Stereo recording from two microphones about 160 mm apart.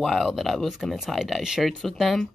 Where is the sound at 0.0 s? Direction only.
Centre (ahead or behind).